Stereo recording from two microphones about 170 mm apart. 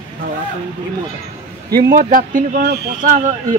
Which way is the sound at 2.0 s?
50° right (ahead or behind).